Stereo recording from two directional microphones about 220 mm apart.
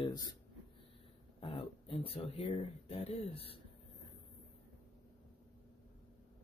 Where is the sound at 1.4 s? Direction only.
25° left (ahead or behind).